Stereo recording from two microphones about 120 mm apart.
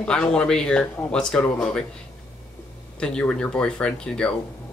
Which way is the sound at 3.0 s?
10° left (ahead or behind).